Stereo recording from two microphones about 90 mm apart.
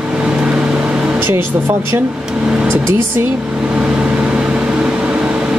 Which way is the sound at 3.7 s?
10° right (ahead or behind).